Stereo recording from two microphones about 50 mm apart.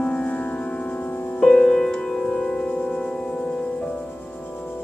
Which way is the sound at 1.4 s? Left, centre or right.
Centre.